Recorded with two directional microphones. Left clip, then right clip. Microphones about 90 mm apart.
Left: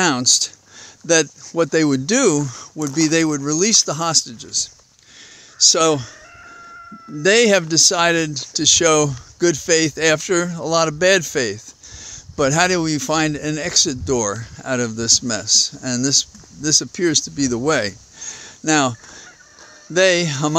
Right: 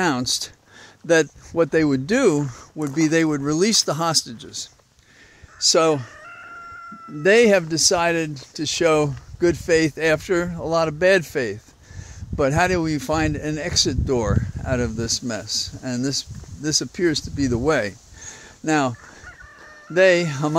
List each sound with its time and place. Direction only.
0.0 s speech: 15° left (ahead or behind)
3.3 s speech: 10° right (ahead or behind)
5.6 s speech: 35° left (ahead or behind)
7.2 s speech: 35° left (ahead or behind)
7.7 s speech: 55° left (ahead or behind); by 17.5 s 35° left (ahead or behind)
17.5 s a sound: 20° left (ahead or behind)
18.6 s speech: 30° left (ahead or behind)